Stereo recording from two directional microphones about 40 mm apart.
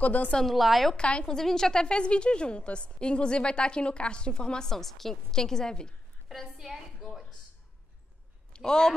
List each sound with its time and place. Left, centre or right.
0.0 s a woman's voice: left
0.5 s a woman's voice: centre
0.9 s a woman's voice: left
1.2 s a woman's voice: centre
4.6 s a woman's voice: centre
6.6 s a woman's voice: centre
8.5 s a woman's voice: centre